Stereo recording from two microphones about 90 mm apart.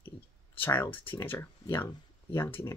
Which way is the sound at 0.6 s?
25° left (ahead or behind).